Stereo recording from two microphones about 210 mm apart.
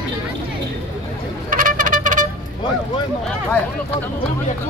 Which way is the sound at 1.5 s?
40° right (ahead or behind).